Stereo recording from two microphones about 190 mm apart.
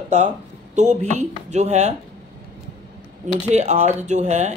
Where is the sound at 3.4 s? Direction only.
35° right (ahead or behind).